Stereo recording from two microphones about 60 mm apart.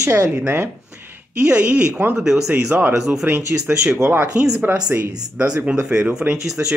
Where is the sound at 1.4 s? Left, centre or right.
Right.